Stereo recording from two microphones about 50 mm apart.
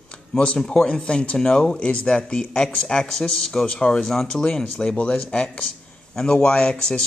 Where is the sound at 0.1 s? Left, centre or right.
Centre.